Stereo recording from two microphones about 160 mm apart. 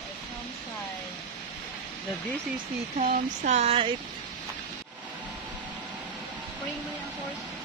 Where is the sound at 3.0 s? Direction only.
45° right (ahead or behind).